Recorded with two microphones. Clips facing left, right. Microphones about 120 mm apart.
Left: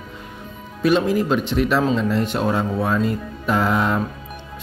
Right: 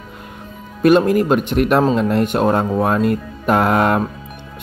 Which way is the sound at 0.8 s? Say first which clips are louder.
Right 5 dB; 55° right (ahead or behind).